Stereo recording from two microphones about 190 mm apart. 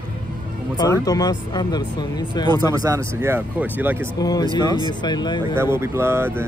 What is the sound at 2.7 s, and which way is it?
Speech, 15° right (ahead or behind).